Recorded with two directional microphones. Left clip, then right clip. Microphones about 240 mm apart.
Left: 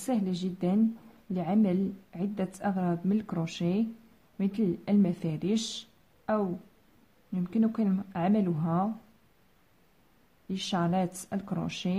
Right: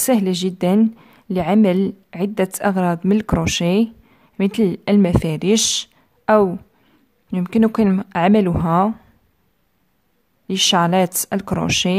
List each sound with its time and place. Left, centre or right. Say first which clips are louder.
0.0 s a woman's voice: right 14 dB; right
10.5 s a woman's voice: right 16 dB; right